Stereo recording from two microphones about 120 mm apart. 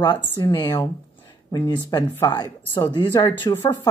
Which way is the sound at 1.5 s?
35° left (ahead or behind).